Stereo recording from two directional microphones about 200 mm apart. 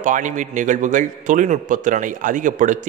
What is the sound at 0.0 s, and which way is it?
A man's voice, 40° right (ahead or behind).